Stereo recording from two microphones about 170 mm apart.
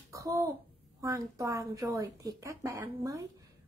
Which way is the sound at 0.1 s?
20° right (ahead or behind).